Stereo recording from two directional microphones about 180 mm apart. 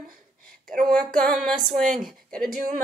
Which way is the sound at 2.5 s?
50° right (ahead or behind).